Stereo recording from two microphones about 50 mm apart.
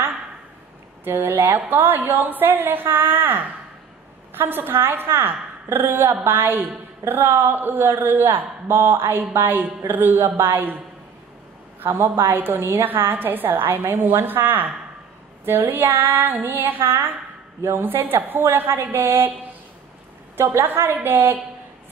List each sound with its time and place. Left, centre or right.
1.0 s a woman's voice: right
11.8 s a woman's voice: right
15.4 s female singing: right
17.6 s a woman's voice: right
20.3 s a woman's voice: right